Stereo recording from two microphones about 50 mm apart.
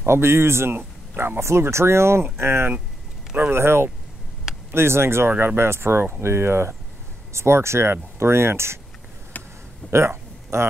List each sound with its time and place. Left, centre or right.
0.0 s speech: right
0.7 s speech: right
1.4 s speech: right
6.2 s speech: right
9.3 s a sound: left
9.8 s a sound: right